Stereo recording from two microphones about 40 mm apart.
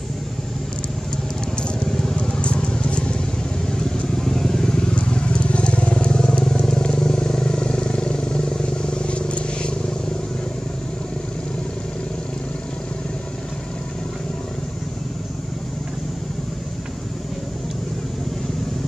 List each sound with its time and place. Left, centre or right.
1.9 s vehicle: centre
2.3 s vehicle: left
4.2 s motorcycle: centre
4.9 s vehicle: left